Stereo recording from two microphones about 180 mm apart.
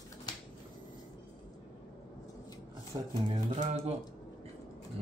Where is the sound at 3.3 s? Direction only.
40° right (ahead or behind).